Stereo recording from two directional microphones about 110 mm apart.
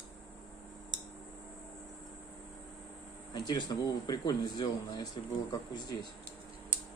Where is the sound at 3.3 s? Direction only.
40° left (ahead or behind).